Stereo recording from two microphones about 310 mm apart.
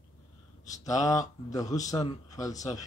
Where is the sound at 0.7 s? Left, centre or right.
Centre.